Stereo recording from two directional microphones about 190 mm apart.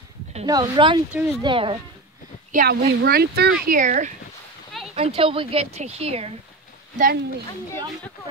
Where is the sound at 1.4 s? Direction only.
25° right (ahead or behind).